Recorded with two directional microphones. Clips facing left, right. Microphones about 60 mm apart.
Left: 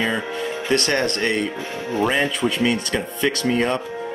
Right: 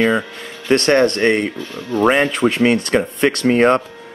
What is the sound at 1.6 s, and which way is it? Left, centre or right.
Speech, left.